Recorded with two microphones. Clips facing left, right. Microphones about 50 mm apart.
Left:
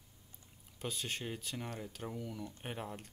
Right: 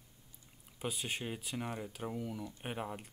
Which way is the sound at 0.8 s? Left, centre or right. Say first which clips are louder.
Right 2 dB; centre.